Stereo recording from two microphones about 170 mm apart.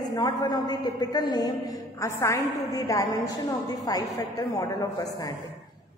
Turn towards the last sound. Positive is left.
turn(degrees=20)  # may be behind; listen again after turning